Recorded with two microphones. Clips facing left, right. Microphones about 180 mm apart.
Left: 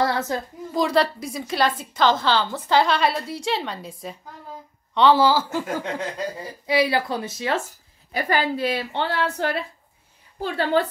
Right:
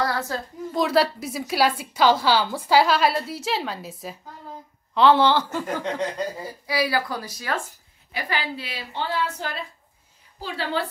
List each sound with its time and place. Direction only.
0.0 s a sound: 20° left (ahead or behind)
0.7 s a woman's voice: 5° right (ahead or behind)
6.6 s speech: 25° left (ahead or behind)
8.1 s a woman's voice: 45° left (ahead or behind); by 9.6 s 65° left (ahead or behind)
10.4 s a woman's voice: 50° left (ahead or behind)